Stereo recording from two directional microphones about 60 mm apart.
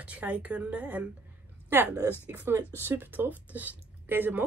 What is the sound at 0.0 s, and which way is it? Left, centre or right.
A woman's voice, right.